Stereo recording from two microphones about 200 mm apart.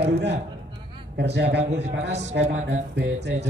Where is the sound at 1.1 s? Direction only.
55° right (ahead or behind).